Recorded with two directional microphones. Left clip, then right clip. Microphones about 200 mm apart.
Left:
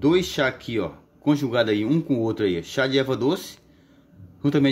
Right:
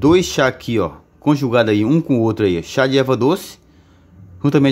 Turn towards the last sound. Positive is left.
turn(degrees=-25)  # may be behind; listen again after turning